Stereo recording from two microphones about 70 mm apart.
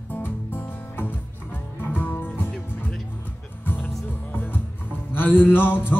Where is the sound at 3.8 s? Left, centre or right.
Centre.